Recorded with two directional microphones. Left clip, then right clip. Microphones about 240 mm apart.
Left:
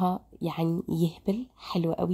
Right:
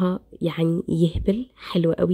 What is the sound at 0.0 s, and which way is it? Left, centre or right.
Speech, centre.